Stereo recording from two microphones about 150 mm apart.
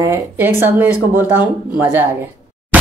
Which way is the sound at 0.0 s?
15° right (ahead or behind).